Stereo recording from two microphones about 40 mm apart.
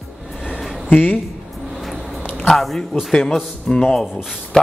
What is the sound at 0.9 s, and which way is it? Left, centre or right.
Speech, left.